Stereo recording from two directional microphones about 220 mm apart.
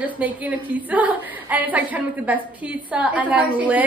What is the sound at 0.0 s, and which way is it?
A woman's voice, 5° right (ahead or behind).